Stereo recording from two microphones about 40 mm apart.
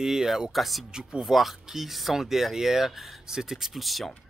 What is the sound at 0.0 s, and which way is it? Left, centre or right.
Speech, centre.